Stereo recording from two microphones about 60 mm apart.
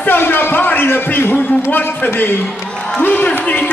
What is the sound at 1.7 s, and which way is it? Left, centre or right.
A man's voice, left.